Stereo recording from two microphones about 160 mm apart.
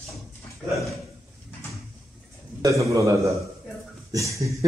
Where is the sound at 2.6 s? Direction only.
20° right (ahead or behind).